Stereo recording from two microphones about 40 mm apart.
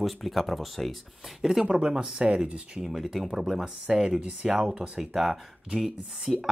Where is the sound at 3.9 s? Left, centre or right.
Centre.